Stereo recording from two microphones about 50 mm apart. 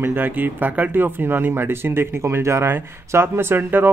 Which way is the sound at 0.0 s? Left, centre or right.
Right.